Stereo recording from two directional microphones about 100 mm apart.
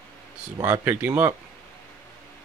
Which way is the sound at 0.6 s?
20° right (ahead or behind).